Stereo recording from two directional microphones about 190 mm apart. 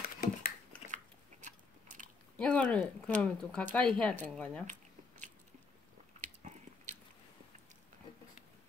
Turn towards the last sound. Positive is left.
turn(degrees=-40)  # may be behind; listen again after turning